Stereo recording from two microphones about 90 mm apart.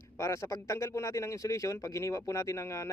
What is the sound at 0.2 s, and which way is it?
Speech, 35° left (ahead or behind).